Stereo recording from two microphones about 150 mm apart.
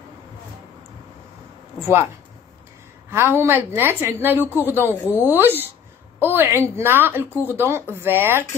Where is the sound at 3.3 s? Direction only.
15° right (ahead or behind).